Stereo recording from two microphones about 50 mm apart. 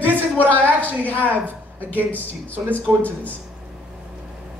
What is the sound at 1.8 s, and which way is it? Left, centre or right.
Speech, left.